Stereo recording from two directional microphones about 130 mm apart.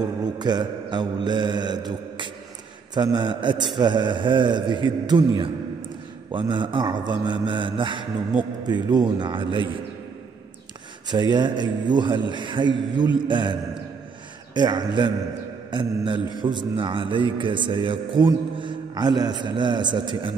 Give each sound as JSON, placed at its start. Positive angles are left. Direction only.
{"t": 0.0, "sound": "a man's voice", "side_deg": -30}
{"t": 6.3, "sound": "a man's voice", "side_deg": -40}
{"t": 11.1, "sound": "a man's voice", "side_deg": -35}